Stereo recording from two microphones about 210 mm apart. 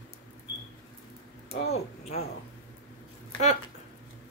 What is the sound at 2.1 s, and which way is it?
Speech, 30° left (ahead or behind).